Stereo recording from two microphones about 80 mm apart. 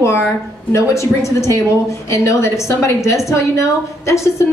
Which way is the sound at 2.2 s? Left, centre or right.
Left.